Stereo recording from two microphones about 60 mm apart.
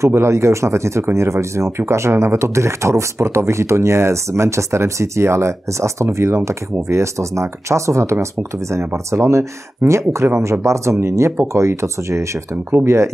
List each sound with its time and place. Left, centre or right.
0.0 s speech: right